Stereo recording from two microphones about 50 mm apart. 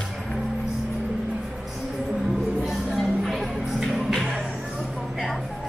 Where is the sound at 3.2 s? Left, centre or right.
Centre.